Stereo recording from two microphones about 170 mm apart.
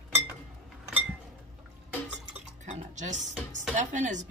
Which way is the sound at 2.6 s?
45° right (ahead or behind).